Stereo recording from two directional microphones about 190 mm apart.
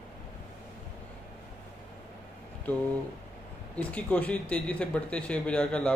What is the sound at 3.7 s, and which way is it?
Speech, 5° left (ahead or behind).